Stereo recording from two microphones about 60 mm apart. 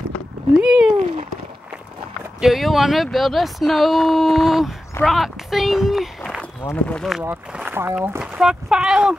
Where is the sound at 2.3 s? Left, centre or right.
Centre.